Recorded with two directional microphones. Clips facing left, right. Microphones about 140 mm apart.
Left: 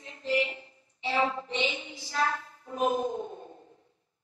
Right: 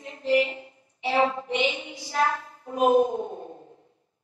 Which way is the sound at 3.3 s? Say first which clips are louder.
Right 6 dB; 35° right (ahead or behind).